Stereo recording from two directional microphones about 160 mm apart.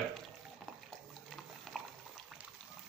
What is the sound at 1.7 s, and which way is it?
Liquid, centre (ahead or behind).